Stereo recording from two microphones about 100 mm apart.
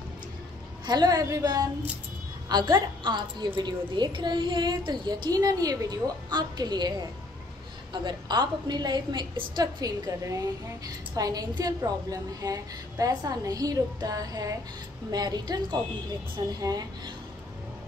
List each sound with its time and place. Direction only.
0.8 s a woman's voice: 40° right (ahead or behind)